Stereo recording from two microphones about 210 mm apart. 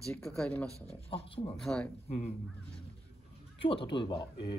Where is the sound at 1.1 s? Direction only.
25° left (ahead or behind).